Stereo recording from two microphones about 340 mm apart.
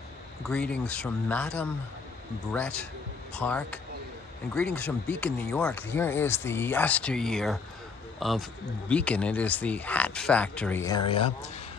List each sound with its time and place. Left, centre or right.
0.5 s speech: centre
2.5 s speech: centre